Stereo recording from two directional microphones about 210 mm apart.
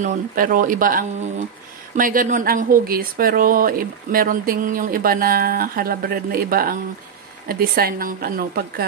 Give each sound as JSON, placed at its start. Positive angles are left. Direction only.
{"t": 0.0, "sound": "speech", "side_deg": -40}